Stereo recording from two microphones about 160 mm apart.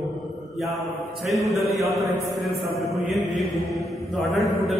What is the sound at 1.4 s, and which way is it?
Speech, centre (ahead or behind).